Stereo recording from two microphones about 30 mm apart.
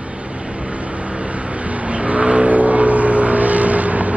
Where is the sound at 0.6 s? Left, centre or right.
Right.